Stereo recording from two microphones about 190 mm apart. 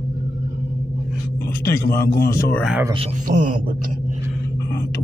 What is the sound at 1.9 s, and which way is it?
Speech, 50° left (ahead or behind).